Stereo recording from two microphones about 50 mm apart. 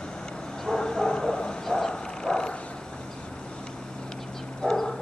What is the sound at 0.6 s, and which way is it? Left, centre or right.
Bow-wow, centre.